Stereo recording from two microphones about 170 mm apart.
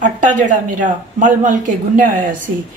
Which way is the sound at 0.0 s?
45° right (ahead or behind).